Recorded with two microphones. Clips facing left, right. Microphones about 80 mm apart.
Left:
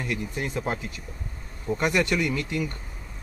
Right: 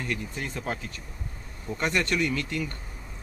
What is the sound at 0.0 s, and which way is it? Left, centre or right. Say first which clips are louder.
Speech: left 3 dB; centre.